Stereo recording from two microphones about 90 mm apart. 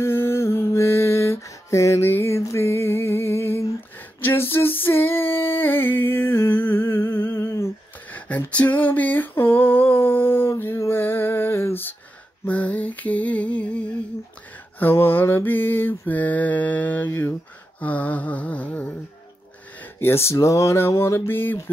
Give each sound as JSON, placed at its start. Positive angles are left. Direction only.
{"t": 0.0, "sound": "mantra", "side_deg": 25}
{"t": 4.2, "sound": "a sound", "side_deg": 25}
{"t": 8.5, "sound": "mantra", "side_deg": 15}
{"t": 12.4, "sound": "lullaby", "side_deg": 15}
{"t": 14.8, "sound": "mantra", "side_deg": 25}
{"t": 17.7, "sound": "lullaby", "side_deg": 15}
{"t": 19.8, "sound": "mantra", "side_deg": 25}